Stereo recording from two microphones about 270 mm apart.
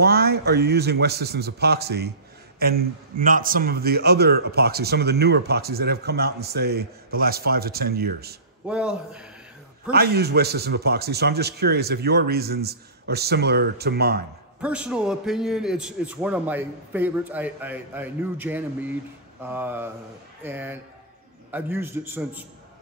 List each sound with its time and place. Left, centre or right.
0.0 s a man's voice: right
8.6 s a man's voice: centre
9.8 s a man's voice: right
14.6 s a man's voice: centre